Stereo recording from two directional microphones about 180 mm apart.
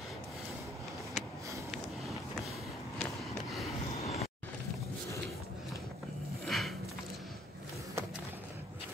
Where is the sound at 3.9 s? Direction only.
35° left (ahead or behind).